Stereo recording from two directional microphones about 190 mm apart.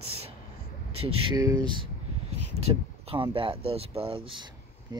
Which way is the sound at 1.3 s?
20° right (ahead or behind).